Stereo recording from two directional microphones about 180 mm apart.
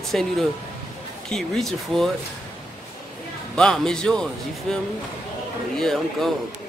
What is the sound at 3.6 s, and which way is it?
Speech, 5° left (ahead or behind).